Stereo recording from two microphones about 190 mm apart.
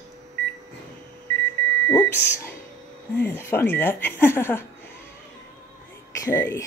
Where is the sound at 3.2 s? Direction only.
10° left (ahead or behind).